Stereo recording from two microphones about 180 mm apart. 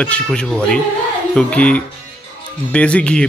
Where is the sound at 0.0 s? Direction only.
5° left (ahead or behind).